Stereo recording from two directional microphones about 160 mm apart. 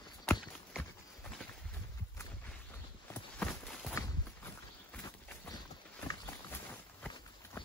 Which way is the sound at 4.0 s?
15° left (ahead or behind).